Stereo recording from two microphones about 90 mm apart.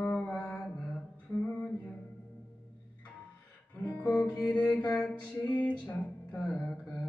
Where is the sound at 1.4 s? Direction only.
15° left (ahead or behind).